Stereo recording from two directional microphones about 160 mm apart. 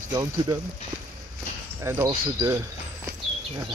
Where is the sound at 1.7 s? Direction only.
20° right (ahead or behind).